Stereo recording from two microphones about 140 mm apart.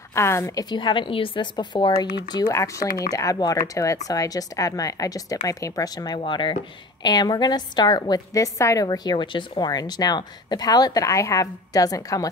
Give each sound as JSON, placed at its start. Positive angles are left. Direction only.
{"t": 0.1, "sound": "a woman's voice", "side_deg": 20}
{"t": 2.4, "sound": "speech", "side_deg": 20}